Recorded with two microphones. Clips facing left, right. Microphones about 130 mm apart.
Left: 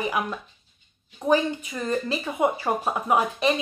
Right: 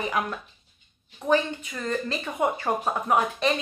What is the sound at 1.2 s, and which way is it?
Speech, 10° left (ahead or behind).